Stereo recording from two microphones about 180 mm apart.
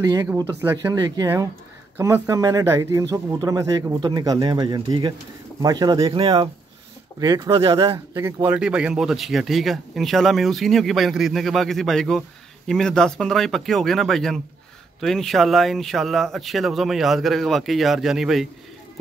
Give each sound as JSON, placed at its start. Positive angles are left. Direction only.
{"t": 0.0, "sound": "speech", "side_deg": -20}